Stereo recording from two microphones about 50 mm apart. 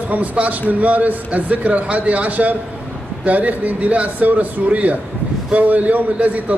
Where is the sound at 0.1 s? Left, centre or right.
Right.